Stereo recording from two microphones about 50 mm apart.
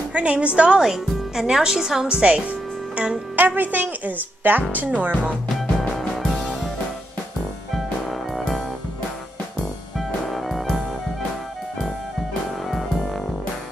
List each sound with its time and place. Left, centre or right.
0.1 s a woman's voice: right
3.3 s a woman's voice: right
4.8 s music: right
6.1 s music: centre
7.7 s music: centre
9.9 s music: centre
12.6 s music: centre